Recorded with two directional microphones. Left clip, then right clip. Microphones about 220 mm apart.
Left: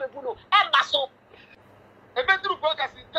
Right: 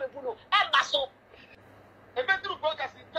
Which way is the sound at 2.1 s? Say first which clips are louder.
Left 5 dB; 20° left (ahead or behind).